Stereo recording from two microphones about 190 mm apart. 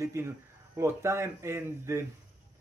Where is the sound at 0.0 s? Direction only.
15° right (ahead or behind).